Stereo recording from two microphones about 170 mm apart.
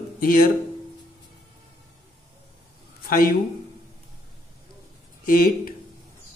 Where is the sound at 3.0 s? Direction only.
55° left (ahead or behind).